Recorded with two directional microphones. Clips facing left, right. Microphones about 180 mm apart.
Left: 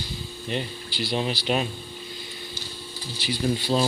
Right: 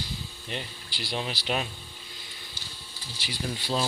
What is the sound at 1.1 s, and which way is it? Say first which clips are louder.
Speech: left 5 dB; 30° left (ahead or behind).